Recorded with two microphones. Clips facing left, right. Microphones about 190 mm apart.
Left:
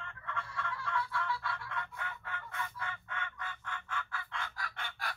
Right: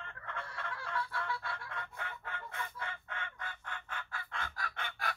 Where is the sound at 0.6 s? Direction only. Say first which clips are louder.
Left 2 dB; 35° right (ahead or behind).